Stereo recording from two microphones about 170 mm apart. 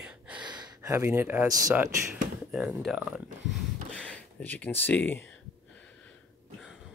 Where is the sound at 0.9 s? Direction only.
15° right (ahead or behind).